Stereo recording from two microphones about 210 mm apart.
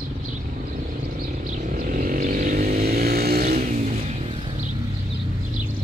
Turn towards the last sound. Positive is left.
turn(degrees=-35)  # may be behind; listen again after turning